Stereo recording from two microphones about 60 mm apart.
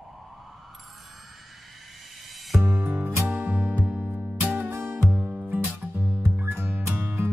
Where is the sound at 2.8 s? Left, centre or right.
Right.